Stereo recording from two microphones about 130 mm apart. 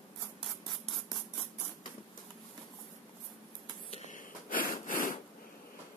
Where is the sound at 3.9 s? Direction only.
75° left (ahead or behind).